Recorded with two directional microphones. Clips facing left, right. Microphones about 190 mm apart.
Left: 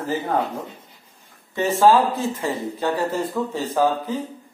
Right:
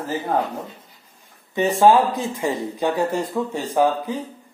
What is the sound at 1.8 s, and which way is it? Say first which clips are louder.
Speech: right 1 dB; 15° right (ahead or behind).